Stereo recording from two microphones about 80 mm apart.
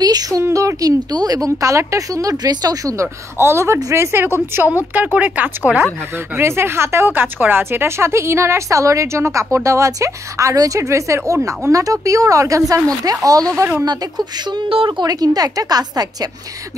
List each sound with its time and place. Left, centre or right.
0.0 s a woman's voice: right
0.4 s speech: right
3.3 s speech: right
4.9 s speech: centre
6.3 s speech: right
13.8 s a woman's voice: right